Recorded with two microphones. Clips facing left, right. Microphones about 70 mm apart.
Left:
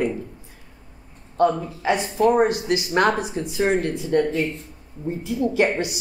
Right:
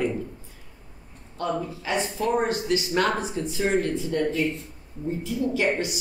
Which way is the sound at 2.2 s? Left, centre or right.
Left.